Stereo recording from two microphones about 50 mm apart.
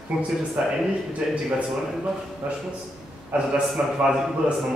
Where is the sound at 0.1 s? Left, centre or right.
Centre.